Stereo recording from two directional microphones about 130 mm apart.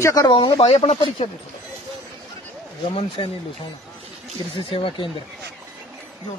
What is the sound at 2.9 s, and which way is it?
Speech, 45° left (ahead or behind).